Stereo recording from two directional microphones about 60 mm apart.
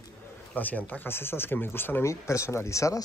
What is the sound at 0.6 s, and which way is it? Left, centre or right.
Speech, left.